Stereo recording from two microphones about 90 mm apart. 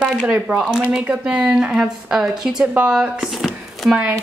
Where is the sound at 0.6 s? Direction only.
Centre (ahead or behind).